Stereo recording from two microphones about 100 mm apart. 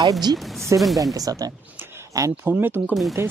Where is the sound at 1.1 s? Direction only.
35° right (ahead or behind).